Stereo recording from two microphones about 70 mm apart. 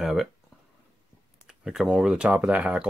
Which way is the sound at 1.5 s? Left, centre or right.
Centre.